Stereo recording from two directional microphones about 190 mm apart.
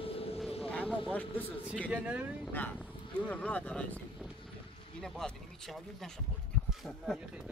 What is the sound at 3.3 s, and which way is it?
Speech, 5° left (ahead or behind).